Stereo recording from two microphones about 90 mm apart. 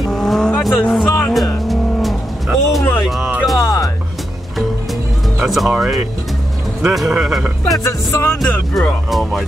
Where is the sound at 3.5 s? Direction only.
40° left (ahead or behind).